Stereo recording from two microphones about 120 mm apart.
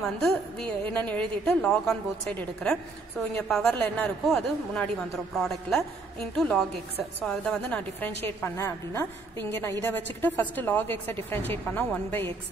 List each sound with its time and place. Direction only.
0.0 s a woman's voice: 5° left (ahead or behind)